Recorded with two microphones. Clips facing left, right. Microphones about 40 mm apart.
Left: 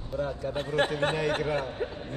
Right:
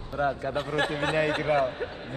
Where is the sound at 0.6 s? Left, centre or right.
Right.